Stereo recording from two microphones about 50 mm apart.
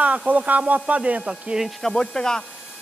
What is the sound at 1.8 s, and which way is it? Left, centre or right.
Speech, centre.